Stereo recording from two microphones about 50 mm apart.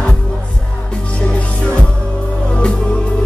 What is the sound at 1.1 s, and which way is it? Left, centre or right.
Music, left.